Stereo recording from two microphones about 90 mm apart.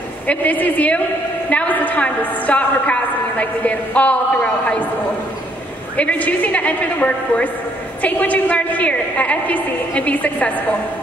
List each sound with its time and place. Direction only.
0.3 s a woman's voice: 20° left (ahead or behind)
5.9 s a woman's voice: 15° left (ahead or behind)